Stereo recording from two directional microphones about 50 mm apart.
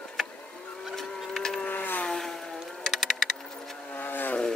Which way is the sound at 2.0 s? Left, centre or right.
Centre.